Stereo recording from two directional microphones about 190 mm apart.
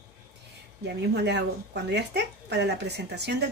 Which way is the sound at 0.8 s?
60° right (ahead or behind).